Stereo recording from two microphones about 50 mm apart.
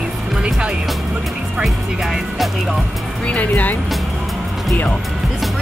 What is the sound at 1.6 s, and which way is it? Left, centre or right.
Speech, centre.